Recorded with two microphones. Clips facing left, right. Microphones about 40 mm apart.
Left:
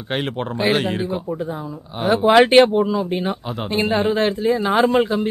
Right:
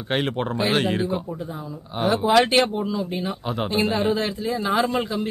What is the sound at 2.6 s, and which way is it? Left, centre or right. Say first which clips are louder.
Speech: left 8 dB; centre.